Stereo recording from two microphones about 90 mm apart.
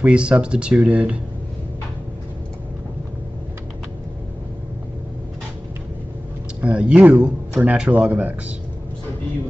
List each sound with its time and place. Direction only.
0.0 s speech: 10° right (ahead or behind)
6.6 s speech: 15° right (ahead or behind)